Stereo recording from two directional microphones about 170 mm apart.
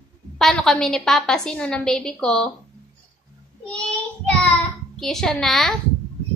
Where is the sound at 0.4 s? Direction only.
Centre (ahead or behind).